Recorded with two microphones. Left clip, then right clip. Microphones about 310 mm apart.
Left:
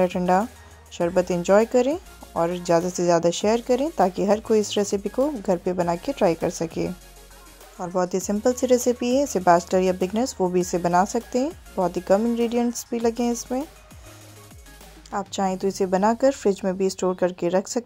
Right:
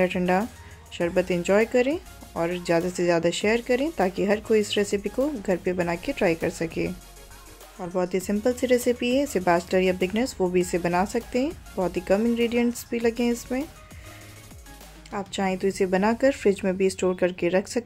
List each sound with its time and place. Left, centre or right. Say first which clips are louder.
0.0 s speech: left 3 dB; centre
15.0 s speech: left 3 dB; centre